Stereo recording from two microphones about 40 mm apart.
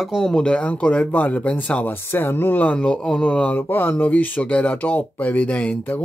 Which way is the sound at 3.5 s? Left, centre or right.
Left.